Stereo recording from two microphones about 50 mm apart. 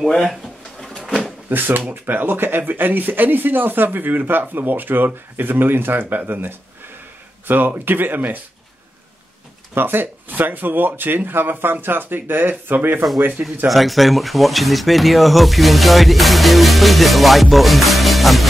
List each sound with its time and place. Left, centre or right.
0.1 s drawer open or close: centre
1.5 s speech: right
9.8 s speech: right
13.7 s speech: centre